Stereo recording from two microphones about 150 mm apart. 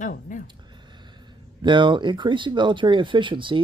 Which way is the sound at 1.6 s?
30° right (ahead or behind).